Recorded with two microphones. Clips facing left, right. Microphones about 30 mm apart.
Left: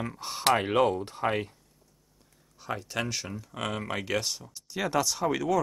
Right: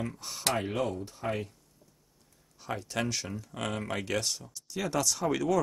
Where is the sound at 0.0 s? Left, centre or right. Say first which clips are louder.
Left 5 dB; left.